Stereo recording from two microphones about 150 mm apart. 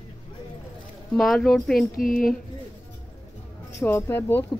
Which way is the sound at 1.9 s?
70° left (ahead or behind).